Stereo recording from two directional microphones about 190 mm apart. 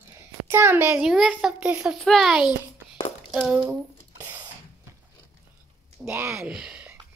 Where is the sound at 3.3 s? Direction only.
5° right (ahead or behind).